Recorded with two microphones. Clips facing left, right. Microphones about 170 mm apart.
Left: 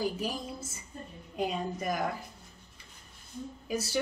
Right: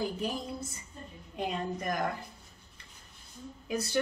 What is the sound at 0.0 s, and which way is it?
A woman's voice, 5° left (ahead or behind).